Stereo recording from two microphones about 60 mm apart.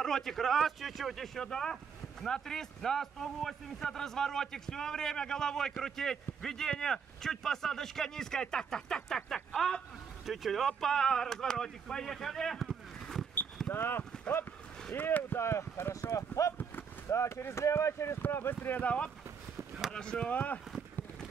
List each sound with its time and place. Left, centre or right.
0.0 s a man's voice: centre
13.7 s speech: left
15.4 s speech: left
17.1 s speech: left
18.2 s speech: left
18.8 s speech: left